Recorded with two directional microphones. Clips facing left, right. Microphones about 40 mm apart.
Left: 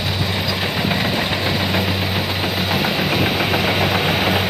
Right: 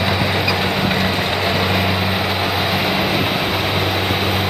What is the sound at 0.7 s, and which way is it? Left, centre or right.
Vehicle, centre.